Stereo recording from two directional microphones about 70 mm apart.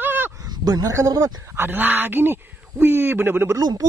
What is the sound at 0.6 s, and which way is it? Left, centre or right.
Speech, right.